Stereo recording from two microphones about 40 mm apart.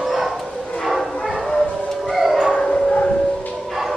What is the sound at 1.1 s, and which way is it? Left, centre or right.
Bow-wow, centre.